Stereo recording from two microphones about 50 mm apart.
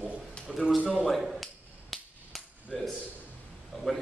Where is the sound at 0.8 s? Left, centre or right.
Centre.